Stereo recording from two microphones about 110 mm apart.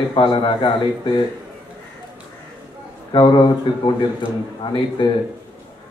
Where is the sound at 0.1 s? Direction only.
50° left (ahead or behind).